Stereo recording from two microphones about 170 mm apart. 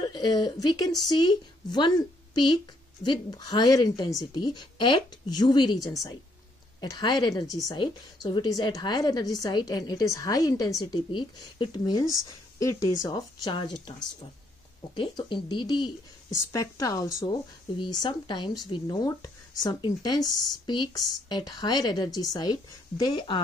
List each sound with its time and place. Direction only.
0.0 s speech: 25° left (ahead or behind)
15.0 s speech: 30° left (ahead or behind)